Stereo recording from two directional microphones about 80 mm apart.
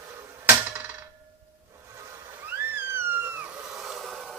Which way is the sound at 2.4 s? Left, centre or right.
Right.